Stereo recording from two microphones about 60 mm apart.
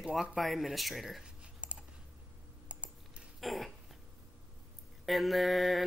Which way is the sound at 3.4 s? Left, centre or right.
Centre.